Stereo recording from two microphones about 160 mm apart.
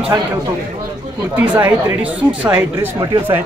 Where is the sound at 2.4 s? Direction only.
15° right (ahead or behind).